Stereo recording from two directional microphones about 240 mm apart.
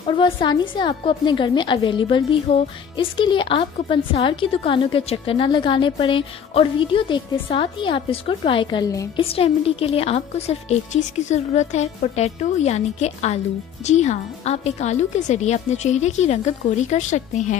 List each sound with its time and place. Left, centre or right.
0.1 s a woman's voice: centre